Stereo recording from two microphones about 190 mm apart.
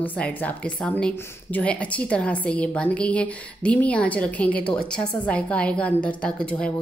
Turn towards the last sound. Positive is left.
turn(degrees=5)  # may be behind; listen again after turning